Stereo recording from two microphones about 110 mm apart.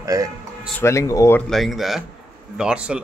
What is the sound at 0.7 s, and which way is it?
Speech, 25° left (ahead or behind).